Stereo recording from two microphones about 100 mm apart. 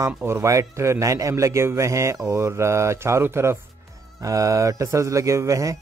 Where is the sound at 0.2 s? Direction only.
25° right (ahead or behind).